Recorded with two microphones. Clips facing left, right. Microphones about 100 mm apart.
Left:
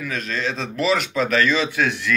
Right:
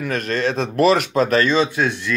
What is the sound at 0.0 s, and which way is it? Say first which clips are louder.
A man's voice: right 5 dB; 55° right (ahead or behind).